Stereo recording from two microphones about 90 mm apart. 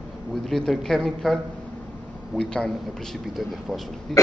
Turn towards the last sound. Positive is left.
turn(degrees=0)  # may be behind; listen again after turning